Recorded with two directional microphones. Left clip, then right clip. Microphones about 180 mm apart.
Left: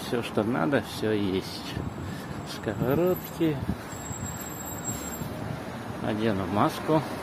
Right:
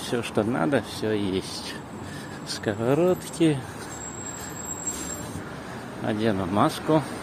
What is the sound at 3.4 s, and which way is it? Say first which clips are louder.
Speech: right 5 dB; 35° right (ahead or behind).